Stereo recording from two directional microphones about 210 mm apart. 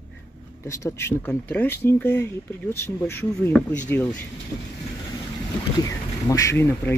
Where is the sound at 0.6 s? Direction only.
15° left (ahead or behind).